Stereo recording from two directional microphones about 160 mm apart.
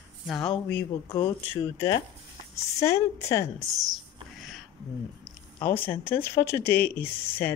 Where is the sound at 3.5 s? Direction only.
Centre (ahead or behind).